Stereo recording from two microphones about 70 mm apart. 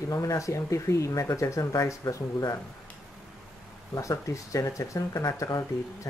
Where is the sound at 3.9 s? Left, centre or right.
Left.